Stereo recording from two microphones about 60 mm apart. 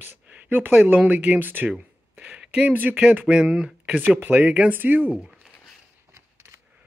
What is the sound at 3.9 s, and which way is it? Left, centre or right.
Speech, right.